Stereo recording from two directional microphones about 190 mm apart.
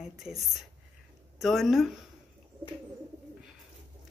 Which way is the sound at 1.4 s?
Centre (ahead or behind).